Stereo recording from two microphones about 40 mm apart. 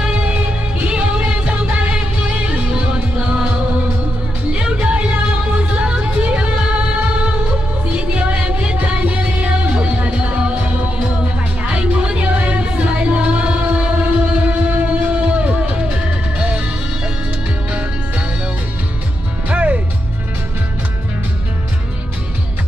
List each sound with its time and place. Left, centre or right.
0.1 s music: right
11.7 s music: right
17.6 s music: right
19.5 s music: right